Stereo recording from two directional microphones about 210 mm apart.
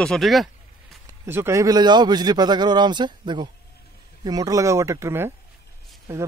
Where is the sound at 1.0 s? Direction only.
10° right (ahead or behind).